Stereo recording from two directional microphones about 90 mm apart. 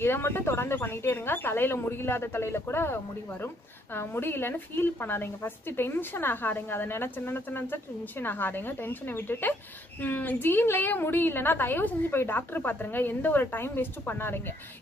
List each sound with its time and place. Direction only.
0.0 s speech: 25° left (ahead or behind)